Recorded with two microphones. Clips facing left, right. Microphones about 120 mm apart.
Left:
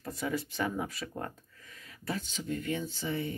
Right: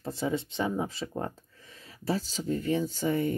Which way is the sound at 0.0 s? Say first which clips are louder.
Right 4 dB; 25° right (ahead or behind).